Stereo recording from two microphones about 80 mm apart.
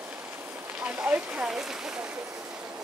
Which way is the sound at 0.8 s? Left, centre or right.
Centre.